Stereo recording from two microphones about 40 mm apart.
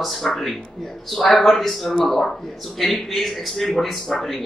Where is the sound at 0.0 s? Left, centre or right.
Centre.